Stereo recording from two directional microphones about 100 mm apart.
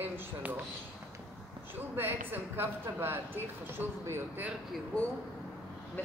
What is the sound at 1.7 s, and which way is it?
Speech, 20° right (ahead or behind).